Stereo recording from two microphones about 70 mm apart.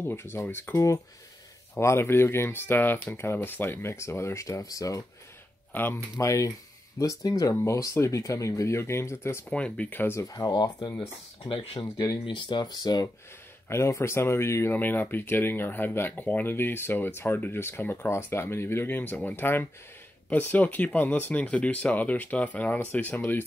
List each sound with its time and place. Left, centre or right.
0.0 s speech: left
0.7 s speech: left
5.7 s speech: left
6.1 s speech: left
7.0 s speech: left
9.5 s speech: centre
10.1 s speech: left
12.4 s speech: left
13.7 s speech: left
14.7 s speech: left